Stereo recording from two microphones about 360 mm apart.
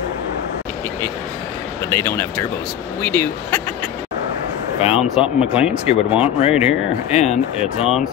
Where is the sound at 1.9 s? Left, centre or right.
Centre.